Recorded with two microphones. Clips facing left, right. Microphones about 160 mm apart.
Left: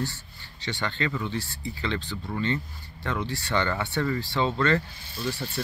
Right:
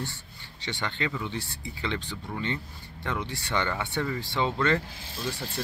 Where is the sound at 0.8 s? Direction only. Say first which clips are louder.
Left 2 dB; 20° right (ahead or behind).